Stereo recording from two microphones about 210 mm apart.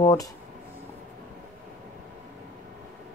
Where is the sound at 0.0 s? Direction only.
15° left (ahead or behind).